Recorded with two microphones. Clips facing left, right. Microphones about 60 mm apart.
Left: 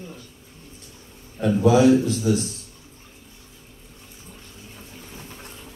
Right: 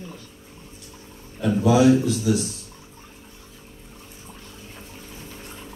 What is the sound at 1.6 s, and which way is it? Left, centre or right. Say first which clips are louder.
Speech: left 1 dB; left.